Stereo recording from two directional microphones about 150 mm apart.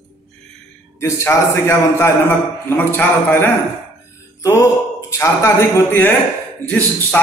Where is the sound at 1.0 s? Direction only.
20° left (ahead or behind).